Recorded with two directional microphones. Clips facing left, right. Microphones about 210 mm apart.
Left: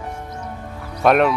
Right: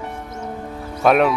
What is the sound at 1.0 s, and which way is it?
Speech, centre (ahead or behind).